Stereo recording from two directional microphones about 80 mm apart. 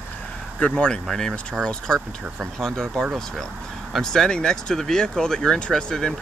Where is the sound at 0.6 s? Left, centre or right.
Left.